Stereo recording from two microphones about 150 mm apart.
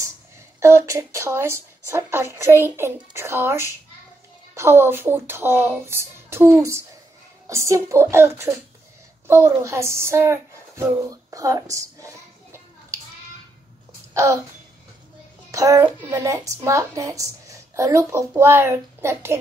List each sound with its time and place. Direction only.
0.6 s speech: 20° right (ahead or behind)
14.1 s a sound: 20° right (ahead or behind)
15.5 s a child's voice: 20° right (ahead or behind)